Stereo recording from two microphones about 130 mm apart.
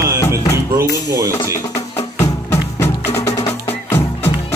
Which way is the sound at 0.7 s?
25° right (ahead or behind).